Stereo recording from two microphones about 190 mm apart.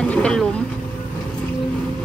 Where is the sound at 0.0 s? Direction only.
5° left (ahead or behind).